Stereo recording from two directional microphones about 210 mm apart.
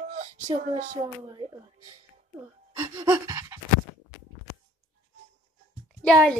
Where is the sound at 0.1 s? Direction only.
35° right (ahead or behind).